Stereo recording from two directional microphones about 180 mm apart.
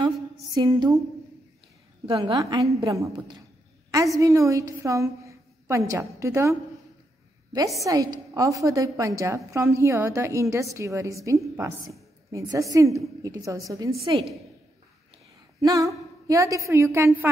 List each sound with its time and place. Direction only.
0.6 s a woman's voice: 20° right (ahead or behind)
2.0 s a woman's voice: 25° right (ahead or behind)
15.6 s a woman's voice: 20° right (ahead or behind)